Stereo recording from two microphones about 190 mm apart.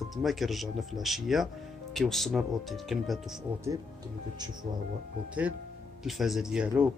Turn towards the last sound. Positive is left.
turn(degrees=-5)  # may be behind; listen again after turning